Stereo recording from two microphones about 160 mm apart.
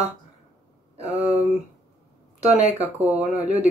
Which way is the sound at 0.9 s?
40° right (ahead or behind).